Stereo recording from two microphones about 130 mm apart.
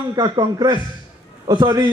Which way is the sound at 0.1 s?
30° right (ahead or behind).